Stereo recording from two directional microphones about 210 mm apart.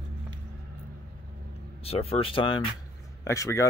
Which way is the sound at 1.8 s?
30° left (ahead or behind).